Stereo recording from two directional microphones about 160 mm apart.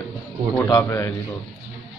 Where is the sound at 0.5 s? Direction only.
15° left (ahead or behind).